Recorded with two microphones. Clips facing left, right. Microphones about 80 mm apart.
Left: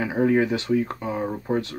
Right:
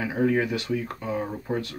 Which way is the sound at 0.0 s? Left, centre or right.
Left.